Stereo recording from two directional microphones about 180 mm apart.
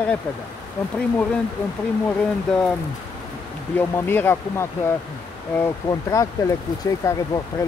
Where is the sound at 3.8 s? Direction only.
10° left (ahead or behind).